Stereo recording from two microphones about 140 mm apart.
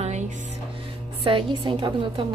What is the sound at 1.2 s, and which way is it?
A woman's voice, 40° right (ahead or behind).